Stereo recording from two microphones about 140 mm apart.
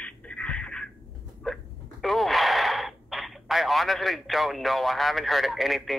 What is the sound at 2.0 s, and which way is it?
Speech, centre (ahead or behind).